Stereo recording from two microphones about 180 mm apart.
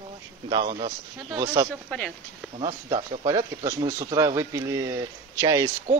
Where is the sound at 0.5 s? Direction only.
25° right (ahead or behind).